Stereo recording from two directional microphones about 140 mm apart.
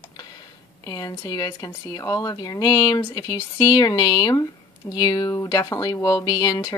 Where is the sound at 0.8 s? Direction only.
25° left (ahead or behind).